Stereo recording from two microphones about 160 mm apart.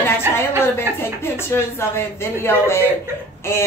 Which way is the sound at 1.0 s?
15° left (ahead or behind).